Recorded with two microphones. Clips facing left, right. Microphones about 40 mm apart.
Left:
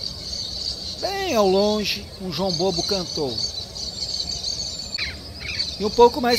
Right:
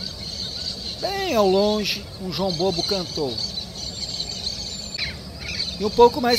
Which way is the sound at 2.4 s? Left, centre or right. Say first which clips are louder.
Even; right.